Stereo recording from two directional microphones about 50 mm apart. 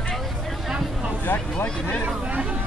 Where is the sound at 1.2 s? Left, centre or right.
Left.